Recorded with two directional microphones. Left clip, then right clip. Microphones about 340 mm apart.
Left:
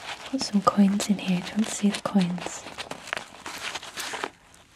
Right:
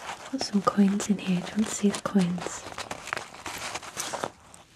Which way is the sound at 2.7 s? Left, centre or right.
Right.